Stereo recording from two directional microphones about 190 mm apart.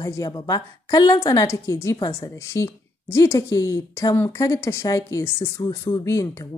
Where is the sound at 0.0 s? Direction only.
20° left (ahead or behind).